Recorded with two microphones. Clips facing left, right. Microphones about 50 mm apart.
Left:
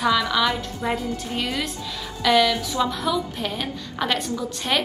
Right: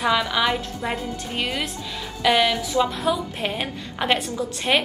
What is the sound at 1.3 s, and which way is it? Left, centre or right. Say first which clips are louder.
A woman's voice: right 2 dB; right.